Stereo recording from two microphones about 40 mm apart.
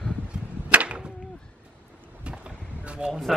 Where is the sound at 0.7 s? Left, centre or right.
Right.